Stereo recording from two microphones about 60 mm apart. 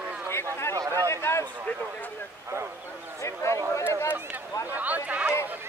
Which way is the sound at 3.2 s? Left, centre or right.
Left.